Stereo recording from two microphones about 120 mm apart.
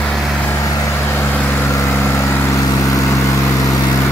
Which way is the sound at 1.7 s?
25° left (ahead or behind).